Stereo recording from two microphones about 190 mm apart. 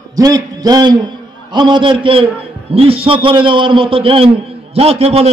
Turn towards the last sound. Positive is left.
turn(degrees=-30)  # may be behind; listen again after turning